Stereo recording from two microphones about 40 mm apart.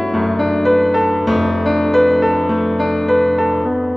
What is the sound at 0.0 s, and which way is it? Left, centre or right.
Music, centre.